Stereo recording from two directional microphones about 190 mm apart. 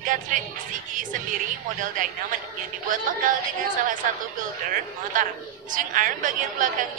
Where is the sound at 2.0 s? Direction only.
45° right (ahead or behind).